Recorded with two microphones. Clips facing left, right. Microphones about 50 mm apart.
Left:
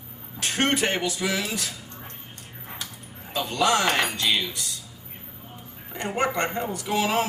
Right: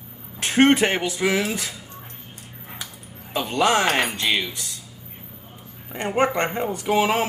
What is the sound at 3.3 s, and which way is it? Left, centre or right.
Speech, right.